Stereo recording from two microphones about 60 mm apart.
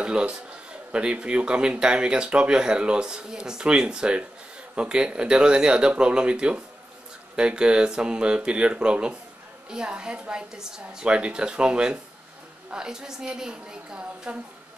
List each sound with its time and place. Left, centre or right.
0.0 s speech: centre